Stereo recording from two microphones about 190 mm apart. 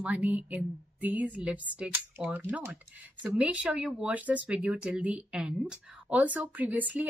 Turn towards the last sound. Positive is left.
turn(degrees=-10)  # may be behind; listen again after turning